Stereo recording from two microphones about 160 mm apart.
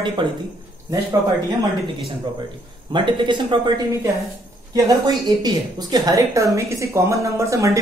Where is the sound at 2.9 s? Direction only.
30° right (ahead or behind).